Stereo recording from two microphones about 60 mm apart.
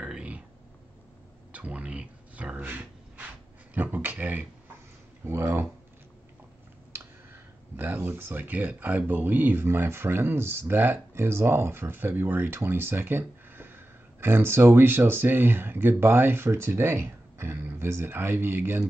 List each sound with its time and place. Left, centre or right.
0.0 s a sound: centre
1.5 s speech: right
5.2 s speech: right
7.7 s speech: right
16.4 s speech: right